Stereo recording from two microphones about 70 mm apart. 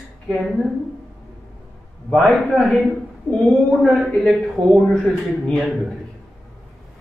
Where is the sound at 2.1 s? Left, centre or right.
Centre.